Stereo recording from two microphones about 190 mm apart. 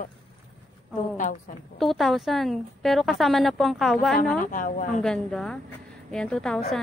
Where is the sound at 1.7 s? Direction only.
Centre (ahead or behind).